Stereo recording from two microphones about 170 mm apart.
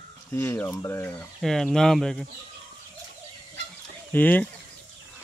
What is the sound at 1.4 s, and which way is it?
Speech, centre (ahead or behind).